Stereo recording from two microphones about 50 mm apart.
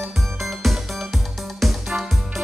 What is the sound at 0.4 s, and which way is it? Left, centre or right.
Music, centre.